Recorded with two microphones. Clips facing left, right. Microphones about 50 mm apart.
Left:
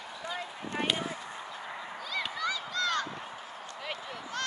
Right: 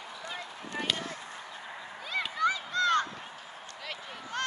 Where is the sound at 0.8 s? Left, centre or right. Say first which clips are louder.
Left 2 dB; centre.